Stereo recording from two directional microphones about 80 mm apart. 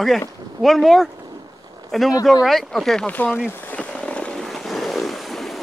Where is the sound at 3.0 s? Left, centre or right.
Left.